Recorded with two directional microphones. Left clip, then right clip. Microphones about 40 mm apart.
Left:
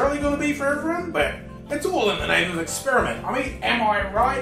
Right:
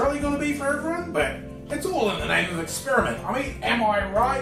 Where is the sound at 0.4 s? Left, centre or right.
Centre.